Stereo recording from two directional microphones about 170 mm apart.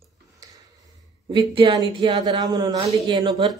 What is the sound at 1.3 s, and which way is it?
Speech, 30° right (ahead or behind).